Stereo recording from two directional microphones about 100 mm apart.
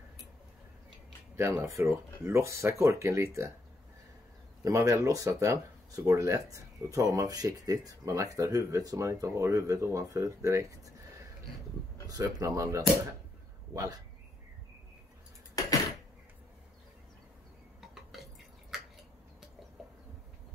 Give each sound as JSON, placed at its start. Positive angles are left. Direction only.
{"t": 1.3, "sound": "speech", "side_deg": -30}
{"t": 4.6, "sound": "speech", "side_deg": -30}
{"t": 12.1, "sound": "speech", "side_deg": -35}
{"t": 15.6, "sound": "a sound", "side_deg": 40}
{"t": 17.7, "sound": "drip", "side_deg": 0}